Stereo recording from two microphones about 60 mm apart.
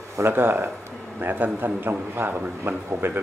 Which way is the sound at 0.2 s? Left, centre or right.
Right.